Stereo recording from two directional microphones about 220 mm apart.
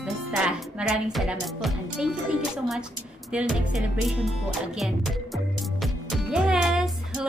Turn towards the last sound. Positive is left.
turn(degrees=0)  # may be behind; listen again after turning